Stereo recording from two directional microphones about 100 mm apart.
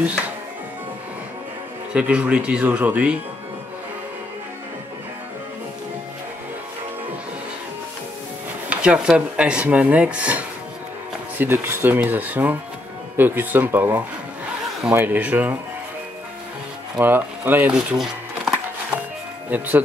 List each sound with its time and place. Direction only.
2.0 s speech: 15° right (ahead or behind)
8.6 s speech: 10° right (ahead or behind)
17.0 s speech: 20° right (ahead or behind)
17.7 s speech: 5° right (ahead or behind)
19.5 s speech: 15° right (ahead or behind)